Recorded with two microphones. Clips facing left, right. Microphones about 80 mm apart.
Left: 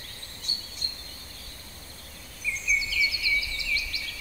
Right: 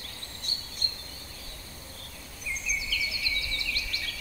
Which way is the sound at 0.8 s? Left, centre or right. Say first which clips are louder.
Right 4 dB; right.